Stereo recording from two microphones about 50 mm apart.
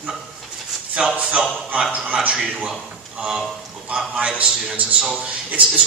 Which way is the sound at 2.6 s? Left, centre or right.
Centre.